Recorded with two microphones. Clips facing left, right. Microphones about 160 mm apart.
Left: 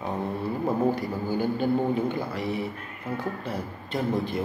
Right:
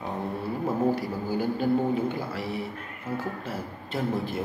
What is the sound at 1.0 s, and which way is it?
Speech, 5° right (ahead or behind).